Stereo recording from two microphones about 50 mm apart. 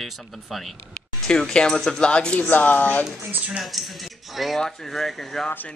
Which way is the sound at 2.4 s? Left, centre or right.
Left.